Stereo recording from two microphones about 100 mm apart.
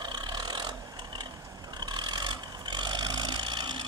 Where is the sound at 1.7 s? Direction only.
45° right (ahead or behind).